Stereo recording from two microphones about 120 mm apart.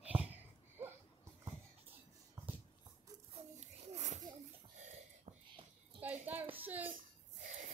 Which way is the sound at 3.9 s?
70° right (ahead or behind).